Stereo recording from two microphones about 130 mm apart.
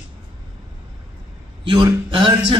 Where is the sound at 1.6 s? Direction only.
35° right (ahead or behind).